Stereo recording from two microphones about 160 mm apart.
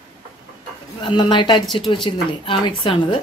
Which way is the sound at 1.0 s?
30° left (ahead or behind).